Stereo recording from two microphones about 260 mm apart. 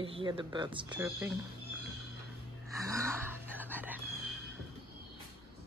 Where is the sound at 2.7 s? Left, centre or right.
Centre.